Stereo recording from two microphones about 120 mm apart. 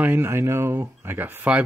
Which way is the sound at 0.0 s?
20° right (ahead or behind).